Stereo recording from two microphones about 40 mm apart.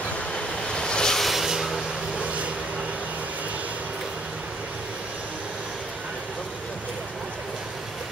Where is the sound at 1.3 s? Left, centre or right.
Centre.